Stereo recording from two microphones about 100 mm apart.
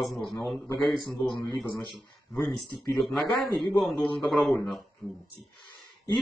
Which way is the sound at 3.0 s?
Centre (ahead or behind).